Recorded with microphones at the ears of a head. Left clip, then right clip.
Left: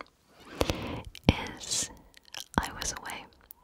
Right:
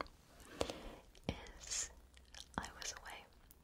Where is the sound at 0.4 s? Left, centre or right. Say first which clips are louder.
Left 12 dB; left.